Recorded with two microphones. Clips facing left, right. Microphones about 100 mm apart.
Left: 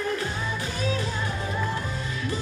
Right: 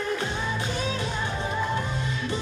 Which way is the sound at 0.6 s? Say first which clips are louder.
Even; 25° right (ahead or behind).